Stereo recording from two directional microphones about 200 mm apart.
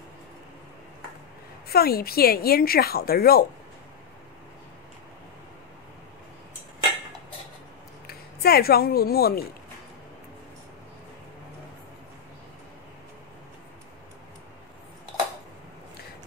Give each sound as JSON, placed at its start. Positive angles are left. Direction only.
{"t": 1.7, "sound": "speech", "side_deg": 50}
{"t": 8.1, "sound": "speech", "side_deg": 50}